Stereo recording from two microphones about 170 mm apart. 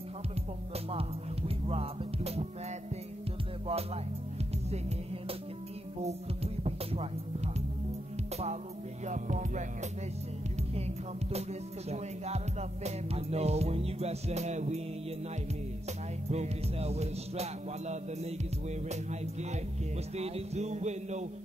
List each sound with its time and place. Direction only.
1.7 s music: 35° right (ahead or behind)
3.6 s music: 35° right (ahead or behind)
6.0 s speech: 35° right (ahead or behind)
9.0 s music: 45° right (ahead or behind)
11.9 s music: 40° right (ahead or behind)
16.3 s music: 40° right (ahead or behind)